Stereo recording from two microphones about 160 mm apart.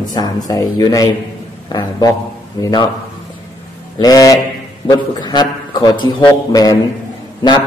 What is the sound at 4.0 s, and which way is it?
A man's voice, 20° left (ahead or behind).